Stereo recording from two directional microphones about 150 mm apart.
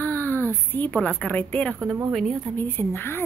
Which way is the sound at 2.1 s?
Centre (ahead or behind).